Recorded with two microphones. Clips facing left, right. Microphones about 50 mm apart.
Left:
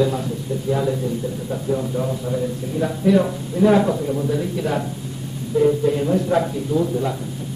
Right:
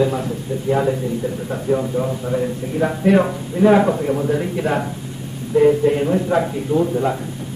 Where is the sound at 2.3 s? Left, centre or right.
Right.